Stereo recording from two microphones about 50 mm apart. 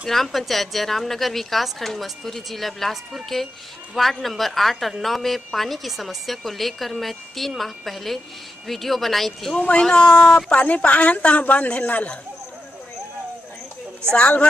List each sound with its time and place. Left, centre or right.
0.0 s a woman's voice: centre
9.6 s a woman's voice: left
10.5 s a woman's voice: left
14.1 s a woman's voice: left